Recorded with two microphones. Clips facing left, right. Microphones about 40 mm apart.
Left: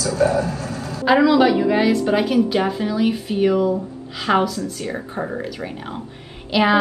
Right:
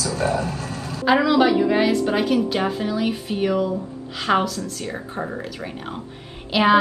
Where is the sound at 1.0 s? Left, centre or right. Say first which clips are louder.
Left 2 dB; centre.